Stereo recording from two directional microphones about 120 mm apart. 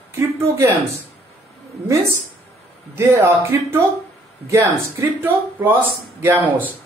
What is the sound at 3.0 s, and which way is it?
Speech, 20° right (ahead or behind).